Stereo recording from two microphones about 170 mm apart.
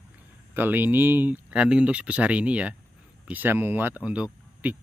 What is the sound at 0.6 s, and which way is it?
Speech, 10° right (ahead or behind).